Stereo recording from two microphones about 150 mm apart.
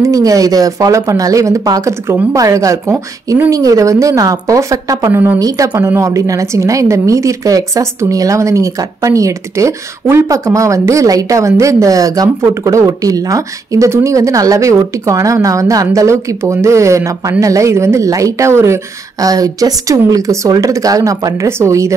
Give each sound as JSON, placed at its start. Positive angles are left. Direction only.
{"t": 0.0, "sound": "a woman's voice", "side_deg": -20}